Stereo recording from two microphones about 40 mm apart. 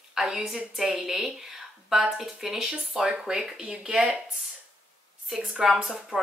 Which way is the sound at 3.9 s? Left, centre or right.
Right.